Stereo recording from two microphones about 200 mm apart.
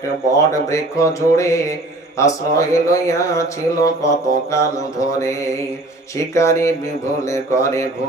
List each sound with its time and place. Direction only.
0.5 s speech: 15° left (ahead or behind)